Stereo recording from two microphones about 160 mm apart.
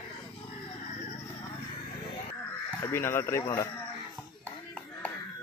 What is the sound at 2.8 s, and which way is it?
Speech, 15° left (ahead or behind).